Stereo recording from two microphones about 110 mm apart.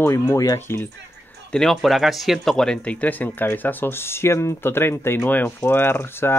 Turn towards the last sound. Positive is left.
turn(degrees=20)  # may be behind; listen again after turning